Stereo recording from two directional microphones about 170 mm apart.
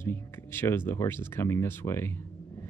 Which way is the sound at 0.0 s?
15° left (ahead or behind).